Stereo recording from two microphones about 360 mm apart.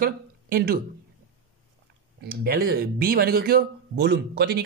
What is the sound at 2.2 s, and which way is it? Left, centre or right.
Speech, right.